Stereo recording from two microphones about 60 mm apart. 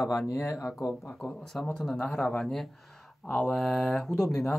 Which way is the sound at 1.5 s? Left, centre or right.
Centre.